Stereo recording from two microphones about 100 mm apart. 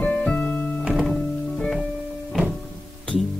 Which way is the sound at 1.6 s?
10° left (ahead or behind).